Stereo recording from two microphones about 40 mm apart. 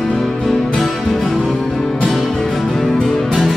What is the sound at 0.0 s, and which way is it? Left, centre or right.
Music, centre.